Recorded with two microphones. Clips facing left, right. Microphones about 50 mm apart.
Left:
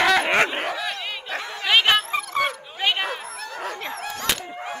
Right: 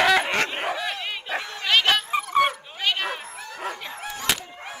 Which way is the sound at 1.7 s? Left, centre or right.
Centre.